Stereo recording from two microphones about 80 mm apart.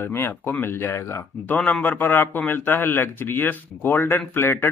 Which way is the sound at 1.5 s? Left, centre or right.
Centre.